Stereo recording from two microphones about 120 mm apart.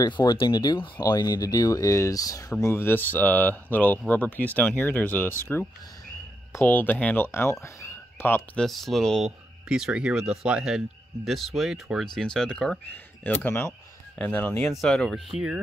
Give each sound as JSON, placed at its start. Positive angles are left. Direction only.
{"t": 0.0, "sound": "speech", "side_deg": 30}
{"t": 2.6, "sound": "speech", "side_deg": 20}
{"t": 7.6, "sound": "a sound", "side_deg": 20}
{"t": 8.5, "sound": "speech", "side_deg": 0}
{"t": 14.7, "sound": "speech", "side_deg": 5}